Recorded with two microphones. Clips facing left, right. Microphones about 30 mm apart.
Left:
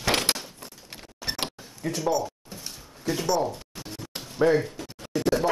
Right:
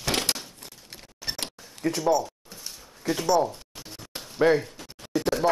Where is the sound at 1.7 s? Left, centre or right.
Right.